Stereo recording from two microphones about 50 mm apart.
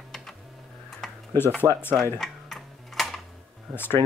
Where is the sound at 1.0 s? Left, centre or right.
Centre.